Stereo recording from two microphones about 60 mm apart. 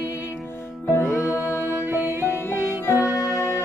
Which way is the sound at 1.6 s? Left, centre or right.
Right.